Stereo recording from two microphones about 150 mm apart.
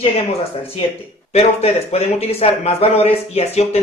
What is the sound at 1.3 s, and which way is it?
A man's voice, 45° left (ahead or behind).